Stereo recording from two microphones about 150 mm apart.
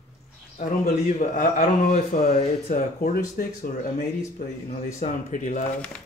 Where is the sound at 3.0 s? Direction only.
70° left (ahead or behind).